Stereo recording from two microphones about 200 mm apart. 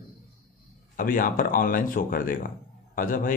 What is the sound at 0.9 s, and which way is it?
Speech, 45° left (ahead or behind).